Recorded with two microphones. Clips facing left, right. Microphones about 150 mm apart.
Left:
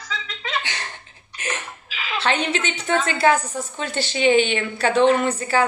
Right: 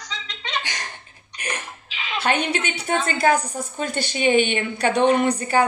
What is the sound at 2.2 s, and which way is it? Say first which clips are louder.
A woman's voice: even; 10° right (ahead or behind).